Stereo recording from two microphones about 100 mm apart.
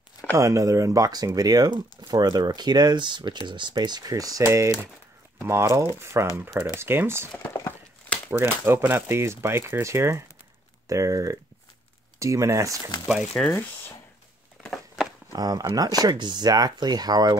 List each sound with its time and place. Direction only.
0.3 s speech: 30° right (ahead or behind)
8.3 s speech: 25° right (ahead or behind)
13.0 s speech: centre (ahead or behind)
13.5 s speech: 25° left (ahead or behind)
14.6 s a sound: centre (ahead or behind)
15.3 s speech: 40° right (ahead or behind)